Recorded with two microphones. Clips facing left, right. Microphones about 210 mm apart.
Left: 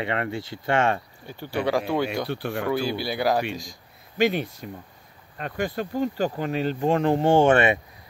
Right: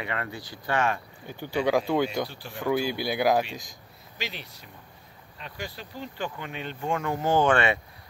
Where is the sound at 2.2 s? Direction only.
65° left (ahead or behind).